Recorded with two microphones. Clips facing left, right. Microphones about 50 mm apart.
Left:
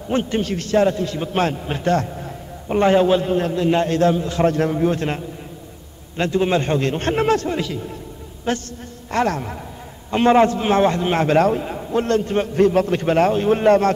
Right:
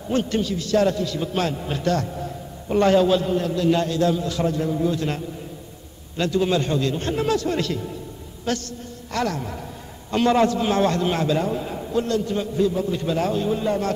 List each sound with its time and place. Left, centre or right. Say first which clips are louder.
0.1 s a man's voice: left 2 dB; left
0.4 s a man's voice: left 2 dB; left
0.7 s a man's voice: left 3 dB; left
4.5 s a man's voice: left 5 dB; left
6.1 s a man's voice: left 2 dB; left
7.4 s a man's voice: even; centre
8.5 s a man's voice: left 3 dB; left
11.1 s a man's voice: left 6 dB; left
11.9 s a man's voice: left 4 dB; left